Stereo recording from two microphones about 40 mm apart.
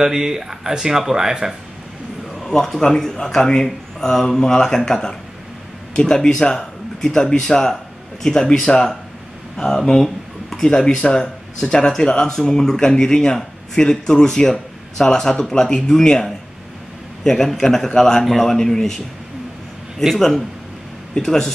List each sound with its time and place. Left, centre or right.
0.0 s speech: centre
2.4 s a man's voice: centre
18.2 s speech: centre
20.2 s speech: centre